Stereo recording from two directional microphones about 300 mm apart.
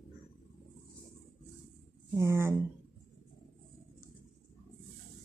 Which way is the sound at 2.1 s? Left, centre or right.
Centre.